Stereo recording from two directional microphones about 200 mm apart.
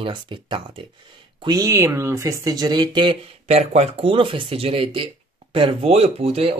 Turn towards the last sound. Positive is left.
turn(degrees=-30)  # may be behind; listen again after turning